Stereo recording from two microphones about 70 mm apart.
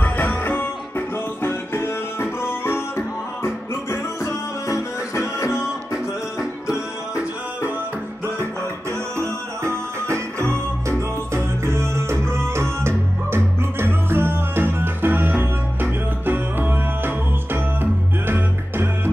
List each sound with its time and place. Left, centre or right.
0.0 s music: left
9.2 s music: right